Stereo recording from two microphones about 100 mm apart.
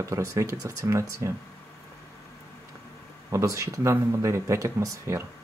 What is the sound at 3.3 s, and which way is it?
Speech, 30° right (ahead or behind).